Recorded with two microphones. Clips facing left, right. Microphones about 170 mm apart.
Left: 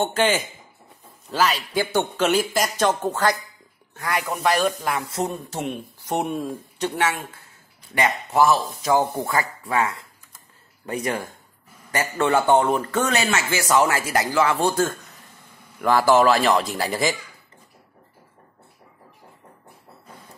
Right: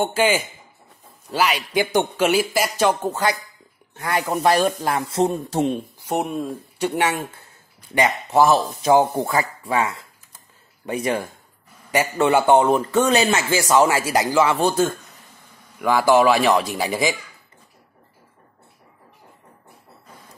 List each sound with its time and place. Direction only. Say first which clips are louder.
0.0 s a man's voice: right 2 dB; 10° right (ahead or behind)
3.9 s speech: right 3 dB; 25° right (ahead or behind)
6.0 s speech: right 1 dB; centre (ahead or behind)
8.0 s a man's voice: right 2 dB; 25° right (ahead or behind)
13.7 s a man's voice: right 2 dB; 15° right (ahead or behind)